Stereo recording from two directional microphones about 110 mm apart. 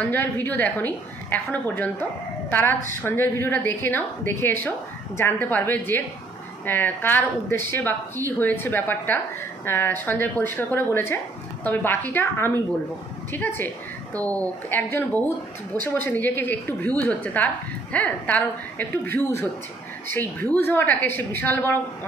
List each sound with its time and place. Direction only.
0.0 s a woman's voice: 15° left (ahead or behind)